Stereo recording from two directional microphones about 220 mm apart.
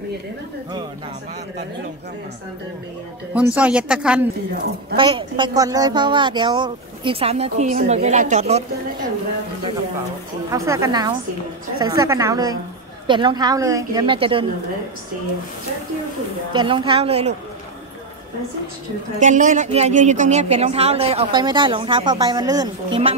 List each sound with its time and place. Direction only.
3.5 s a woman's voice: 5° right (ahead or behind)
4.9 s speech: 20° right (ahead or behind)
10.5 s a woman's voice: 15° right (ahead or behind)
16.5 s speech: 25° right (ahead or behind)
19.1 s speech: 35° right (ahead or behind); by 22.7 s 15° right (ahead or behind)